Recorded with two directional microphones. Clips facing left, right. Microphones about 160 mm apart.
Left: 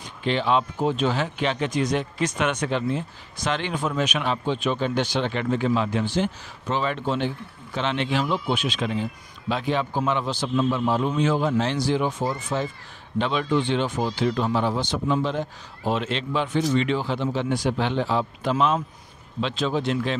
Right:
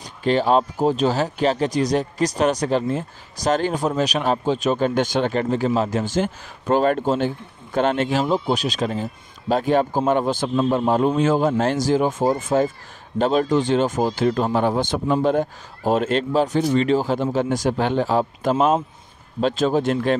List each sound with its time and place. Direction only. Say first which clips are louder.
0.2 s speech: right 5 dB; 40° right (ahead or behind)
10.5 s speech: right 2 dB; 40° right (ahead or behind)